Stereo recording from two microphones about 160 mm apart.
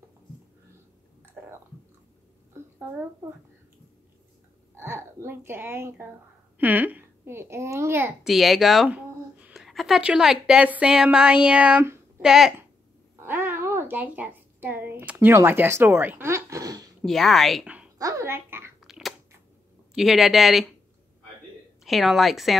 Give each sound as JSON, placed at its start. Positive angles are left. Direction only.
{"t": 1.4, "sound": "chewing", "side_deg": -10}
{"t": 4.7, "sound": "a child's voice", "side_deg": -15}
{"t": 8.2, "sound": "speech", "side_deg": 0}
{"t": 13.2, "sound": "a sound", "side_deg": -15}
{"t": 17.0, "sound": "speech", "side_deg": 0}
{"t": 17.9, "sound": "a sound", "side_deg": -20}
{"t": 18.8, "sound": "chewing", "side_deg": 0}
{"t": 19.9, "sound": "speech", "side_deg": 0}
{"t": 21.8, "sound": "speech", "side_deg": 0}